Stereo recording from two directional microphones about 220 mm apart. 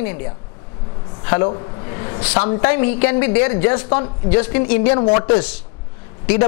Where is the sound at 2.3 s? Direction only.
25° left (ahead or behind).